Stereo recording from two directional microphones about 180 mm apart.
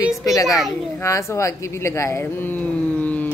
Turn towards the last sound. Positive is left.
turn(degrees=10)  # may be behind; listen again after turning